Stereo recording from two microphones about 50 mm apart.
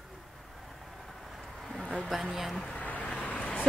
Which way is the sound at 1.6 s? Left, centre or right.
Centre.